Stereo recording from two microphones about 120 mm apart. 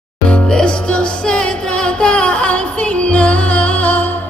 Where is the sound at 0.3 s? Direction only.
10° left (ahead or behind).